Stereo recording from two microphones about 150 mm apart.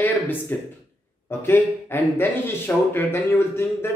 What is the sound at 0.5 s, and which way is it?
Speech, 15° left (ahead or behind).